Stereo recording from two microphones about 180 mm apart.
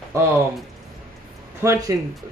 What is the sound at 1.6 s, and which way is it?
Speech, 15° right (ahead or behind).